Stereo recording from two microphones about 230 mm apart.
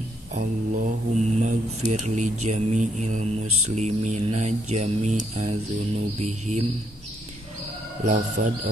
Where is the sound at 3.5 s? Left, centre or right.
Right.